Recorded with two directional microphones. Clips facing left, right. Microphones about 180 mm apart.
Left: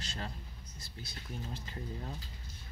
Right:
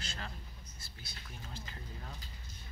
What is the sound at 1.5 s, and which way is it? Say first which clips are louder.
Speech: left 6 dB; 25° left (ahead or behind).